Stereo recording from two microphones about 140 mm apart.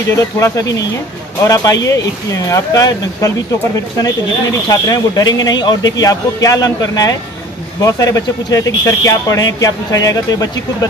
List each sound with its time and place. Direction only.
0.1 s speech: 25° left (ahead or behind)
4.6 s speech: 25° left (ahead or behind)